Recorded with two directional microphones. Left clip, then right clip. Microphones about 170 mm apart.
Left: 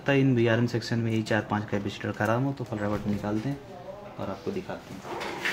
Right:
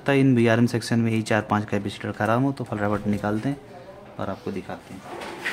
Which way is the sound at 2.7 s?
35° right (ahead or behind).